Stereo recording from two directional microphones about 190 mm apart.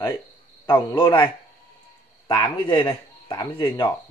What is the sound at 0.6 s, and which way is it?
Speech, 20° left (ahead or behind).